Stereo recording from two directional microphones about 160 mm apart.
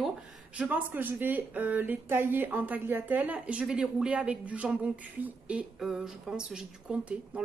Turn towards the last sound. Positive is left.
turn(degrees=-5)  # may be behind; listen again after turning